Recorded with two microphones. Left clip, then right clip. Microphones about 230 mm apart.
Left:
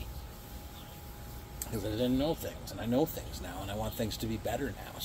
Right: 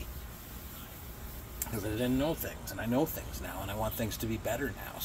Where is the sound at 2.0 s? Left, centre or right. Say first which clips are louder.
Left 1 dB; centre.